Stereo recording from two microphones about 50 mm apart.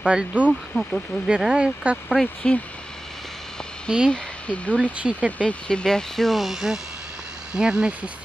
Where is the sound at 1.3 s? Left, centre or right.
Right.